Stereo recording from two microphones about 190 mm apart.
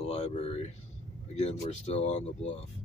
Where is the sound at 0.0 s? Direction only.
35° left (ahead or behind).